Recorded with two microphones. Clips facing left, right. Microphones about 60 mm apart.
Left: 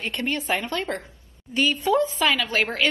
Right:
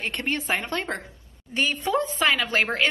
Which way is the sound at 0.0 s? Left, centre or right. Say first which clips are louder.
Left 1 dB; right.